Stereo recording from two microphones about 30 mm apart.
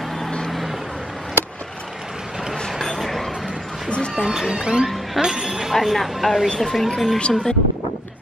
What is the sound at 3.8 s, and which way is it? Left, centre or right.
Cat, left.